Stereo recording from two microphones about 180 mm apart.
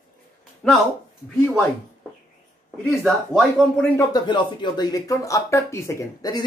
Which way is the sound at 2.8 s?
Centre (ahead or behind).